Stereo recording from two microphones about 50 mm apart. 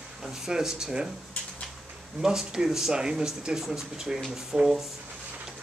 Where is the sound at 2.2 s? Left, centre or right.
Centre.